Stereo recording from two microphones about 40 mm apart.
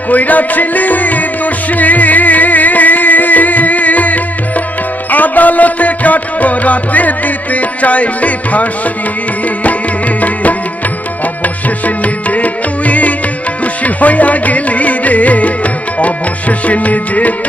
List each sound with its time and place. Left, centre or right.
0.1 s music: left
11.4 s music: left